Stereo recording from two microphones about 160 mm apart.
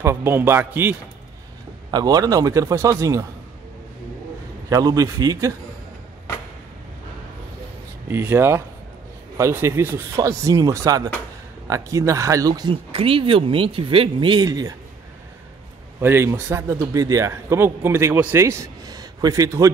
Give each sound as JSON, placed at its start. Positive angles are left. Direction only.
{"t": 0.0, "sound": "speech", "side_deg": -15}
{"t": 1.9, "sound": "a man's voice", "side_deg": -25}
{"t": 4.6, "sound": "a man's voice", "side_deg": -20}
{"t": 8.1, "sound": "a man's voice", "side_deg": -15}
{"t": 12.9, "sound": "speech", "side_deg": -35}
{"t": 16.0, "sound": "speech", "side_deg": -15}